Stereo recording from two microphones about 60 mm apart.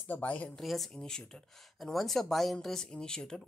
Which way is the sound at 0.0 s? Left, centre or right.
Left.